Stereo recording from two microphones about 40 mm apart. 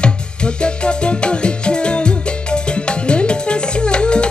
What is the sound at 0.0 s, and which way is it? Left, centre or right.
Music, left.